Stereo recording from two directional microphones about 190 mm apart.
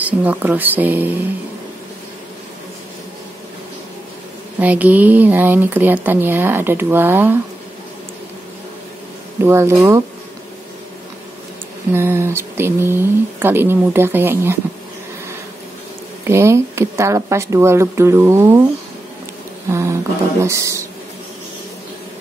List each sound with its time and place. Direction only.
0.0 s speech: 10° right (ahead or behind)
4.6 s speech: 10° right (ahead or behind)
9.4 s speech: 15° right (ahead or behind)
11.9 s speech: 15° right (ahead or behind)
16.3 s speech: 15° right (ahead or behind)
19.7 s speech: 15° right (ahead or behind)